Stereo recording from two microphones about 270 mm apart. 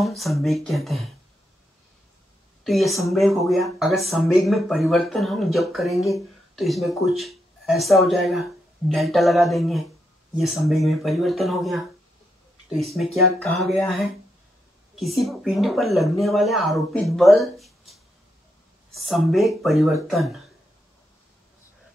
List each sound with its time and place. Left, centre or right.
0.0 s speech: centre
2.6 s speech: centre